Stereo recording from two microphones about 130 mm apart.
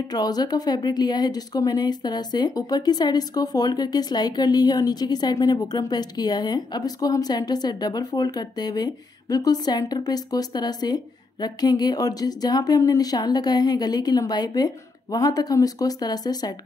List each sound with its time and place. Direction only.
0.1 s speech: 30° left (ahead or behind)